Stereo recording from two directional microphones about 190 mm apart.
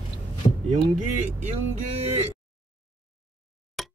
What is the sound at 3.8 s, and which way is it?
Plop, centre (ahead or behind).